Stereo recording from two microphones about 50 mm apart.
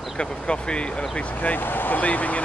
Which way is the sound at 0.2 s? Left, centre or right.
Left.